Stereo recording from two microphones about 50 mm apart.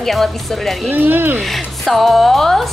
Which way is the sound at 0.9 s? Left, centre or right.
Right.